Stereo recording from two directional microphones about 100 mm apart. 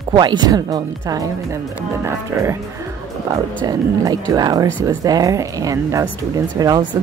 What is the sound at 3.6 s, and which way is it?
Speech, 40° right (ahead or behind).